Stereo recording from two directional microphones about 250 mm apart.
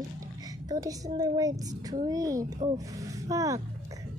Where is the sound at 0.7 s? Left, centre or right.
Centre.